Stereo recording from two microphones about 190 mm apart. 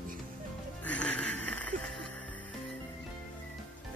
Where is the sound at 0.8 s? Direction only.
5° left (ahead or behind).